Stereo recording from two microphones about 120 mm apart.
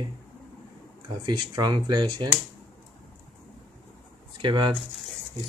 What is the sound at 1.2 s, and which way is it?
Speech, 40° right (ahead or behind).